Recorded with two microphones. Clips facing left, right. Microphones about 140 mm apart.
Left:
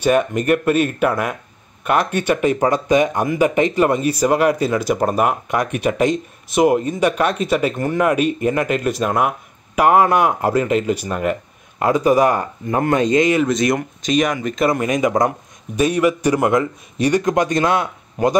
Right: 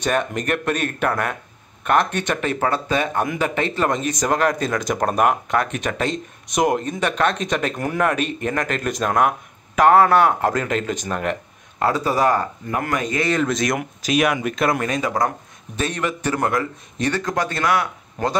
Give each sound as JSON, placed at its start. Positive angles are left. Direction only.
{"t": 0.0, "sound": "speech", "side_deg": 10}
{"t": 8.0, "sound": "speech", "side_deg": 10}
{"t": 12.7, "sound": "speech", "side_deg": 25}
{"t": 13.5, "sound": "speech", "side_deg": 0}
{"t": 14.8, "sound": "speech", "side_deg": 15}